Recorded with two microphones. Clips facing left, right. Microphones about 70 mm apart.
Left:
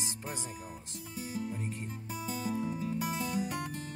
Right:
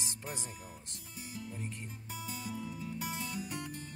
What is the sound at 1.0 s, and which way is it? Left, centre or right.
Speech, left.